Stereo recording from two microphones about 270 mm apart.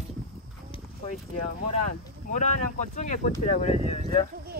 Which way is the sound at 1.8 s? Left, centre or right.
Left.